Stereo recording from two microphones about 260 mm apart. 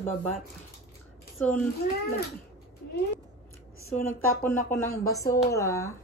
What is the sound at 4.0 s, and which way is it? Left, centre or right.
Speech, centre.